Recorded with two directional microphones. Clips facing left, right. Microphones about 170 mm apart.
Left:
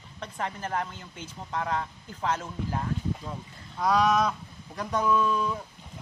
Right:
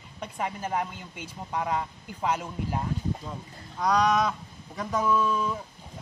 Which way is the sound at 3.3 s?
Centre (ahead or behind).